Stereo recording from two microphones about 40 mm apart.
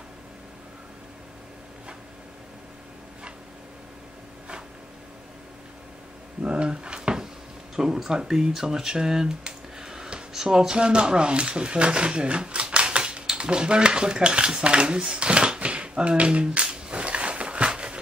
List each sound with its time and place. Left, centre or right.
6.4 s drawer open or close: right
7.7 s speech: centre; by 16.6 s right
16.6 s a sound: right